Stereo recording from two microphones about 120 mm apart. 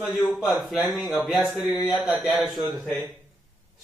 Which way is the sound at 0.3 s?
5° right (ahead or behind).